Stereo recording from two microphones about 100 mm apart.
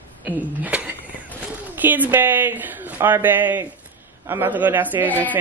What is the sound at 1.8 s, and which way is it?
Speech, 20° right (ahead or behind).